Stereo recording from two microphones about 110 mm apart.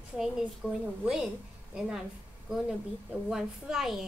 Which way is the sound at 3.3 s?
5° right (ahead or behind).